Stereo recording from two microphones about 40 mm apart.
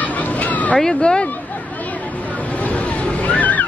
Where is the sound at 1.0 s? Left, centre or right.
Left.